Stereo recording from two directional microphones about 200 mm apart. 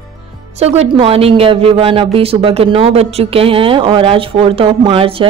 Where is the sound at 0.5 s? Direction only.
30° right (ahead or behind).